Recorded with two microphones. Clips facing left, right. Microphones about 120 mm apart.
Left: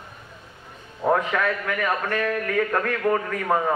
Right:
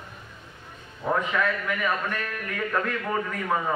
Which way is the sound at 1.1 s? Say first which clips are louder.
Left 3 dB; 55° left (ahead or behind).